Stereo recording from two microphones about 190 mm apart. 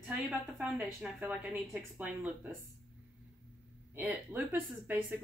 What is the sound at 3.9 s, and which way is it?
A woman's voice, 10° right (ahead or behind).